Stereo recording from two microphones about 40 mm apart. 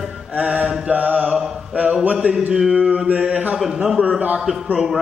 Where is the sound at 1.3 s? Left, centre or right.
Centre.